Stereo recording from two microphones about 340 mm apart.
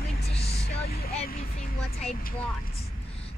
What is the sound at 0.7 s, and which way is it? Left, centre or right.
Vehicle, left.